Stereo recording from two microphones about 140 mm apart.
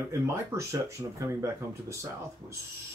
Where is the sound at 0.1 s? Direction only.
20° right (ahead or behind).